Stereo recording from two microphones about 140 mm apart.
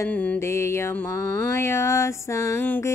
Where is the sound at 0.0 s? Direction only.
10° left (ahead or behind).